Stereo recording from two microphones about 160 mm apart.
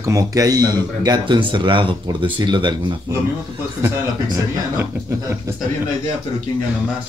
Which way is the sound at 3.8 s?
15° right (ahead or behind).